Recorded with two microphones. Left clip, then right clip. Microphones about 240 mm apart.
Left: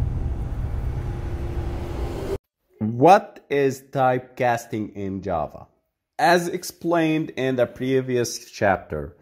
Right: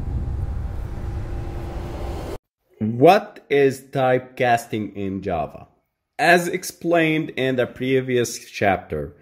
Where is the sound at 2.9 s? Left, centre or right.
Centre.